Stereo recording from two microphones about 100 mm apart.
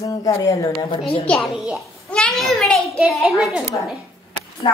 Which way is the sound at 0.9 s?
60° left (ahead or behind).